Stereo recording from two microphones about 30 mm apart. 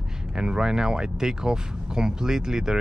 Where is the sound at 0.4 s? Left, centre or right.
Right.